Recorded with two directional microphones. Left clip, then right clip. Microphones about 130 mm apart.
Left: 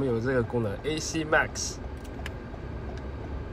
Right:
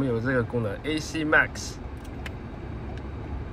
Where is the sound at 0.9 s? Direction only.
70° left (ahead or behind).